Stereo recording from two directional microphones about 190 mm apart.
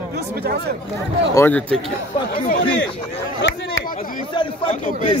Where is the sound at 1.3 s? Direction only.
10° left (ahead or behind).